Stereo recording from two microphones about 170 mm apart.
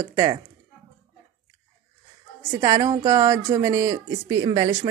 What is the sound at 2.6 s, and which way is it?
A woman's voice, 20° right (ahead or behind).